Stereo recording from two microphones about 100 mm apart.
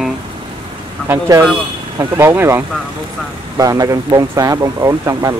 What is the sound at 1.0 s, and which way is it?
Speech, 35° right (ahead or behind).